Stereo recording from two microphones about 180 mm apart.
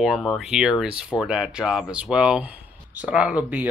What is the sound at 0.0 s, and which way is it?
Speech, centre (ahead or behind).